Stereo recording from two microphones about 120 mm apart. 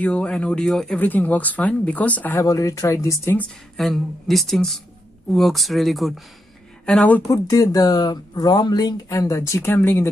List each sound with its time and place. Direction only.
0.0 s speech: 10° left (ahead or behind)
0.9 s speech: 15° left (ahead or behind)
2.4 s speech: 25° left (ahead or behind)
3.3 s speech: 5° left (ahead or behind)
6.9 s speech: 15° left (ahead or behind)
7.2 s speech: 25° left (ahead or behind)